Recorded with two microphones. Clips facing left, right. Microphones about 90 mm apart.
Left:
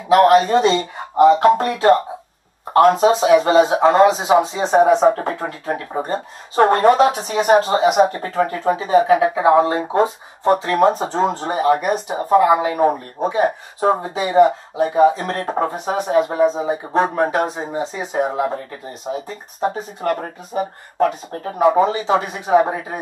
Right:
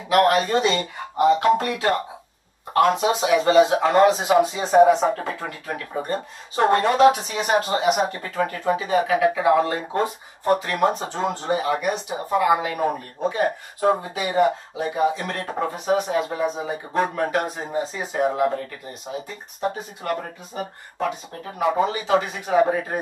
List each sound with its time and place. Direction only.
0.1 s speech: 25° left (ahead or behind)
6.5 s speech: 40° left (ahead or behind); by 18.6 s 25° left (ahead or behind)
19.2 s speech: 40° left (ahead or behind)